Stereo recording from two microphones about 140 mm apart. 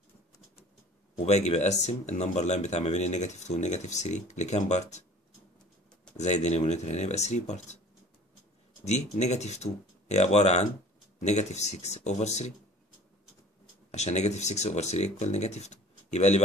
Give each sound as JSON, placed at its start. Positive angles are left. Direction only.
{"t": 1.1, "sound": "speech", "side_deg": 55}
{"t": 6.1, "sound": "speech", "side_deg": 55}
{"t": 8.8, "sound": "speech", "side_deg": 55}
{"t": 13.9, "sound": "speech", "side_deg": 55}